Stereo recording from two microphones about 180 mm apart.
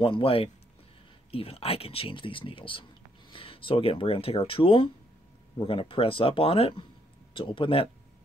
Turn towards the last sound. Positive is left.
turn(degrees=30)  # may be behind; listen again after turning